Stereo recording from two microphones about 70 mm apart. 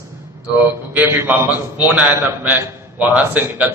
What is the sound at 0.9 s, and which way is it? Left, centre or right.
Speech, right.